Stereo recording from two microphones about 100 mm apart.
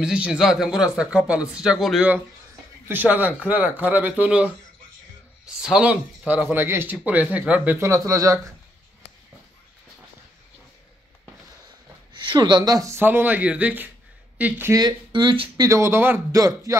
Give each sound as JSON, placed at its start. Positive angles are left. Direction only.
{"t": 0.0, "sound": "speech", "side_deg": -5}
{"t": 2.9, "sound": "speech", "side_deg": -15}
{"t": 5.6, "sound": "speech", "side_deg": -10}
{"t": 7.8, "sound": "speech", "side_deg": -30}
{"t": 12.1, "sound": "speech", "side_deg": -50}
{"t": 13.0, "sound": "speech", "side_deg": -20}
{"t": 14.7, "sound": "speech", "side_deg": -45}
{"t": 15.5, "sound": "speech", "side_deg": -35}
{"t": 16.3, "sound": "speech", "side_deg": -35}